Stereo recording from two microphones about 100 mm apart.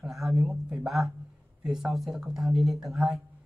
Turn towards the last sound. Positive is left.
turn(degrees=0)  # may be behind; listen again after turning